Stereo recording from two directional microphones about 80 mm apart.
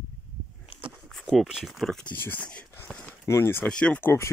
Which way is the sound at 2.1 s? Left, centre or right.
Left.